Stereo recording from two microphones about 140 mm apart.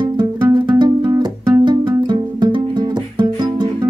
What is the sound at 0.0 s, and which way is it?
Music, 30° right (ahead or behind).